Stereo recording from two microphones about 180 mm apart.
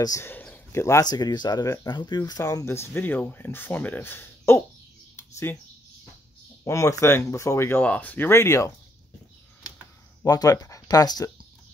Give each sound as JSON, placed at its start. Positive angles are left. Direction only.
{"t": 0.0, "sound": "speech", "side_deg": 15}
{"t": 5.1, "sound": "a sound", "side_deg": 15}
{"t": 6.6, "sound": "speech", "side_deg": 15}
{"t": 10.2, "sound": "speech", "side_deg": 20}